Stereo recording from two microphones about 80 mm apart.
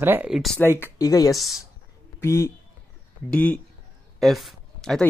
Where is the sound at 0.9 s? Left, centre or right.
Left.